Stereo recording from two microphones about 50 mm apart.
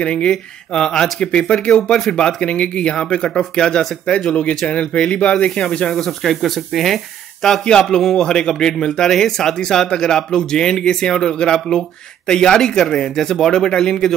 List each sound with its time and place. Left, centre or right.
0.0 s speech: centre
1.9 s speech: centre
2.4 s speech: left
5.5 s speech: centre